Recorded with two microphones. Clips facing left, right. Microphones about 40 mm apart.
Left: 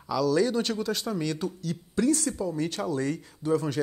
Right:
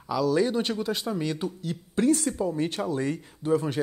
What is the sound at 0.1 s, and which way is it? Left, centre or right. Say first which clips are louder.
Speech: even; centre.